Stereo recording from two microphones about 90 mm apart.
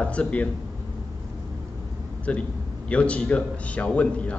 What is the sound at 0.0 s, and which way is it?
Speech, 15° left (ahead or behind).